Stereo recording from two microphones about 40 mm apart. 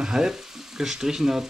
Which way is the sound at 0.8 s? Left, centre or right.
Centre.